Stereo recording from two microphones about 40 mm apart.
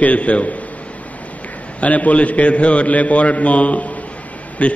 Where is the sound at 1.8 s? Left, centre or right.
Left.